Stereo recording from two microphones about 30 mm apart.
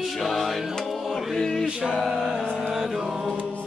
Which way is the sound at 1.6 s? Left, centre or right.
Right.